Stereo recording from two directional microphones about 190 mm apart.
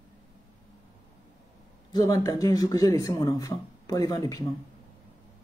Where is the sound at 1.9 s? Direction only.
20° left (ahead or behind).